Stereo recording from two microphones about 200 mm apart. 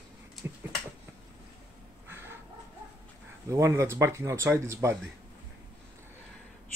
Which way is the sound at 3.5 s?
15° right (ahead or behind).